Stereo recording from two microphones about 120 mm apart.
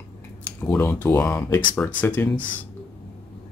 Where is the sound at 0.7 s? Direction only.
15° left (ahead or behind).